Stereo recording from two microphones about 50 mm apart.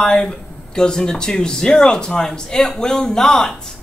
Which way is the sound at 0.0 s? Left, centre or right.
Centre.